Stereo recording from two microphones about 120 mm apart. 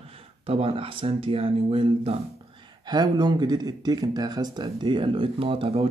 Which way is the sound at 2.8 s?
35° right (ahead or behind).